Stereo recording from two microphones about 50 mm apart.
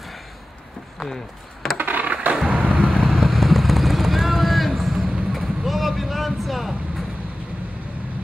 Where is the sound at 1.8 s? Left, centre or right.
Right.